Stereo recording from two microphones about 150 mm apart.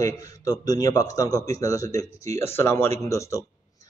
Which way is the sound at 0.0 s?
25° left (ahead or behind).